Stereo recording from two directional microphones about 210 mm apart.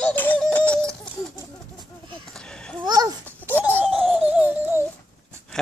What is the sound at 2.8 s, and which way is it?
Babbling, 20° right (ahead or behind).